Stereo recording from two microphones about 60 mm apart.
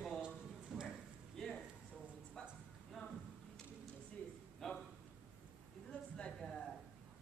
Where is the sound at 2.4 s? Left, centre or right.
Centre.